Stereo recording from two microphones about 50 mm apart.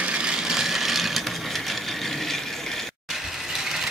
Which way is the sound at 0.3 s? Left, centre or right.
Centre.